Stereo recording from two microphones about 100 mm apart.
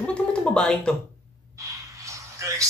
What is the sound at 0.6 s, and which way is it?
Speech, 10° left (ahead or behind).